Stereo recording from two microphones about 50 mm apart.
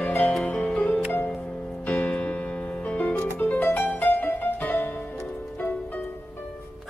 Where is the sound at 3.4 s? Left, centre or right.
Left.